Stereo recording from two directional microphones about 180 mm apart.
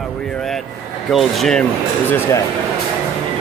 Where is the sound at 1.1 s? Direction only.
Centre (ahead or behind).